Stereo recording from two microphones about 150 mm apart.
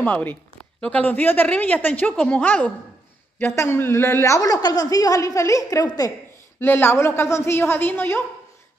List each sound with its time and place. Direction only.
0.0 s a woman's voice: 10° left (ahead or behind)